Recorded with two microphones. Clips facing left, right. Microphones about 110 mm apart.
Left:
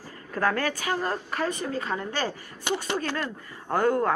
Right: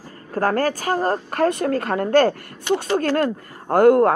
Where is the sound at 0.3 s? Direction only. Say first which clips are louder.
Right 6 dB; 40° right (ahead or behind); by 2.6 s 65° right (ahead or behind).